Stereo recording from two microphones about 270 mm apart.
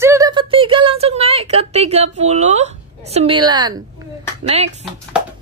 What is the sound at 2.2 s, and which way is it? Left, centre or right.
A woman's voice, right.